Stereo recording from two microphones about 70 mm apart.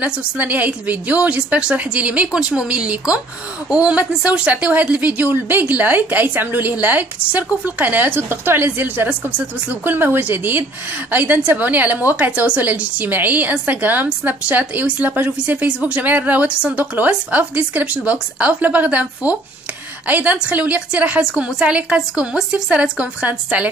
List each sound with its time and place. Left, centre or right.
0.0 s a woman's voice: right